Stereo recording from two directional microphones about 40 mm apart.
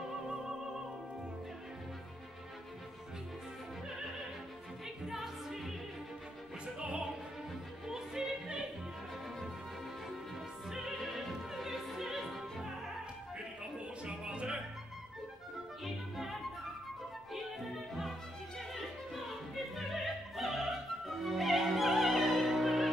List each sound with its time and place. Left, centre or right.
5.0 s music: centre
6.6 s opera: right
7.9 s music: centre
10.7 s music: centre
11.0 s opera: centre
13.7 s music: right
15.8 s music: centre
19.5 s opera: centre
21.2 s music: centre